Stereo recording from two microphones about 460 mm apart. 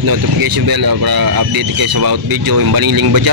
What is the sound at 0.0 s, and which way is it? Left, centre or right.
Speech, right.